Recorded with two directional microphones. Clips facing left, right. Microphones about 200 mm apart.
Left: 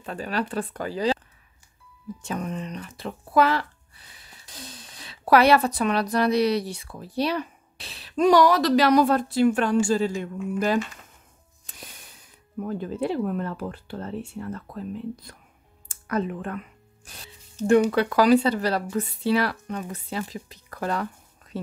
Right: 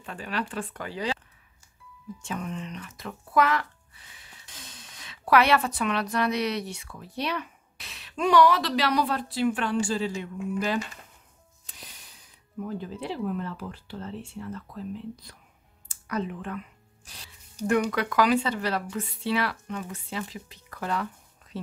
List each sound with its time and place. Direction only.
0.0 s speech: 40° left (ahead or behind)
2.2 s speech: 40° left (ahead or behind)
11.6 s music: 50° left (ahead or behind)
12.6 s speech: 50° left (ahead or behind)
15.9 s a sound: 50° left (ahead or behind)
17.6 s speech: 30° left (ahead or behind)